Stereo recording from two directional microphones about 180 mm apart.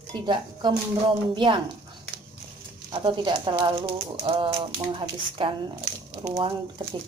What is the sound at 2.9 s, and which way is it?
Speech, 25° right (ahead or behind).